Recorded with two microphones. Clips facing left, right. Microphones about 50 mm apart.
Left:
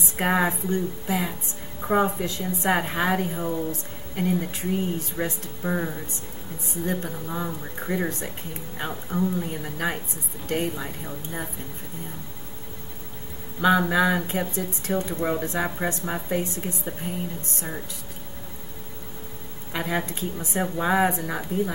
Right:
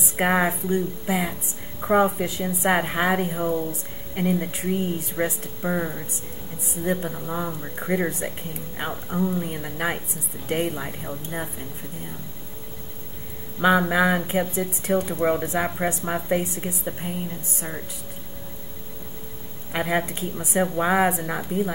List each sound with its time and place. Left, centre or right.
0.1 s speech: centre
7.9 s speech: centre
13.6 s speech: right
19.7 s speech: centre